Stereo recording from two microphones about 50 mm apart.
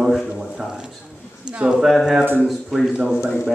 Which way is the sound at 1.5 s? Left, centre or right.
Centre.